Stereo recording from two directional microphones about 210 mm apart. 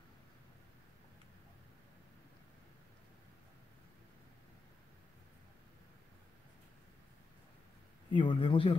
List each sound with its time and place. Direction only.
8.1 s speech: 25° left (ahead or behind)